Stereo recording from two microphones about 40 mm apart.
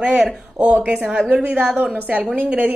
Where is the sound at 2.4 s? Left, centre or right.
Right.